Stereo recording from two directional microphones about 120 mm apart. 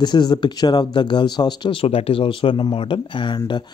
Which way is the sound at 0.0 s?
40° left (ahead or behind).